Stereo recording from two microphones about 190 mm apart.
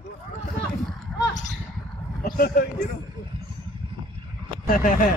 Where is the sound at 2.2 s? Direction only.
50° left (ahead or behind).